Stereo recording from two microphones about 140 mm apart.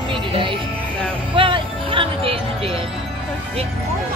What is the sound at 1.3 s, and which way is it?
Music, 40° right (ahead or behind).